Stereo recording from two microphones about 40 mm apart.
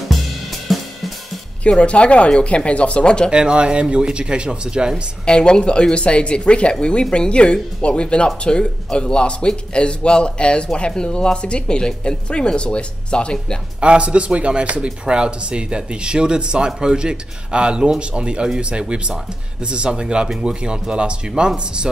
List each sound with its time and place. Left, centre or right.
0.7 s cymbal: centre
1.6 s speech: left
3.3 s speech: right
5.2 s speech: left
13.7 s speech: right